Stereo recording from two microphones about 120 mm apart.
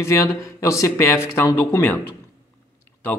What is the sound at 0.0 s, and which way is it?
Speech, 25° left (ahead or behind).